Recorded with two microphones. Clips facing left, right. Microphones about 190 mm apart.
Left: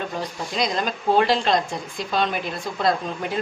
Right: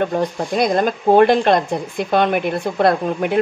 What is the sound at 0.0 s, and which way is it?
Speech, 55° right (ahead or behind).